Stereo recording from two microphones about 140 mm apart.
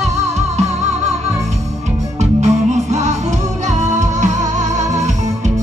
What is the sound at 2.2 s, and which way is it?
Music, 55° right (ahead or behind).